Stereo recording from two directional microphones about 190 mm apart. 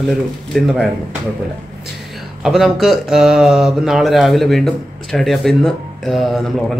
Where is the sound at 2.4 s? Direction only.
Centre (ahead or behind).